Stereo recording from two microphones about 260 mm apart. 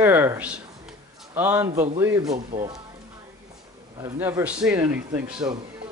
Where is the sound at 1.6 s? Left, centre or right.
Right.